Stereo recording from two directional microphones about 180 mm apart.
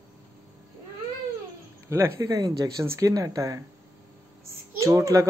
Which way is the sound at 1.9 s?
15° right (ahead or behind).